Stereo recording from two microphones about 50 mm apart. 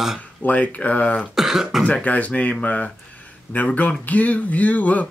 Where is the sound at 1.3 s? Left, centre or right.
Centre.